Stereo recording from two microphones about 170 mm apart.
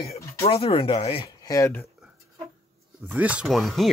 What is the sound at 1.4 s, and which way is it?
Speech, 20° left (ahead or behind).